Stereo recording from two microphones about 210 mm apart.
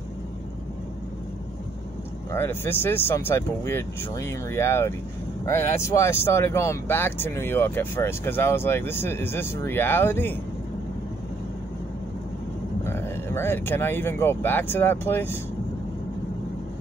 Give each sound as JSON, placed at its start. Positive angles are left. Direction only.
{"t": 2.3, "sound": "speech", "side_deg": 10}
{"t": 12.8, "sound": "speech", "side_deg": 10}